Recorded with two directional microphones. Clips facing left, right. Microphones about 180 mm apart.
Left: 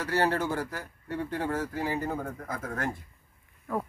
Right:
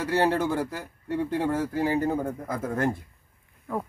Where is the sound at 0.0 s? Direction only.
25° right (ahead or behind).